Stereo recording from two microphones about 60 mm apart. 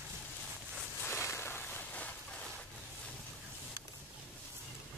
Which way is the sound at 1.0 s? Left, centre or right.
Left.